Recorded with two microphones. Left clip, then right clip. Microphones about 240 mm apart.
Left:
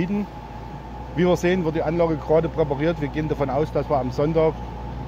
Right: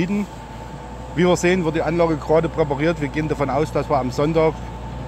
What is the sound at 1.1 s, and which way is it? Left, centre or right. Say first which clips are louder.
Speech: right 3 dB; centre.